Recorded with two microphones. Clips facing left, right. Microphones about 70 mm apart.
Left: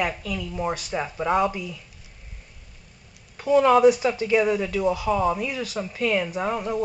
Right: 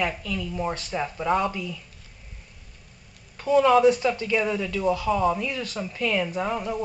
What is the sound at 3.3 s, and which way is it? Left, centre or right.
Speech, centre.